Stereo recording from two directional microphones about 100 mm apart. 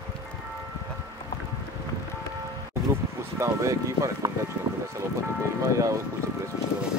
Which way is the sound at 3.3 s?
30° right (ahead or behind).